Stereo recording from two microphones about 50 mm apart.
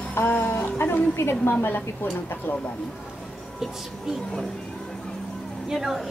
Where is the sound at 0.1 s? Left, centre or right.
Left.